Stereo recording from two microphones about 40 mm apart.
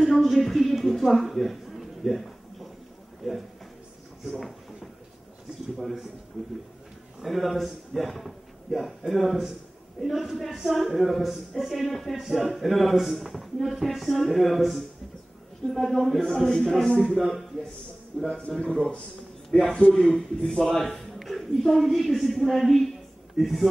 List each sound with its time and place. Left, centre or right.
0.0 s a sound: centre
3.2 s speech: centre
7.2 s speech: centre
19.7 s speech: centre
20.1 s speech: centre